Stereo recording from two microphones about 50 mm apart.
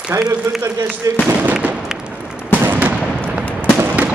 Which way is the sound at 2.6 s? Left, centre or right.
Right.